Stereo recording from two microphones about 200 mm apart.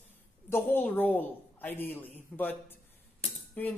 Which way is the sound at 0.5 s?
10° left (ahead or behind).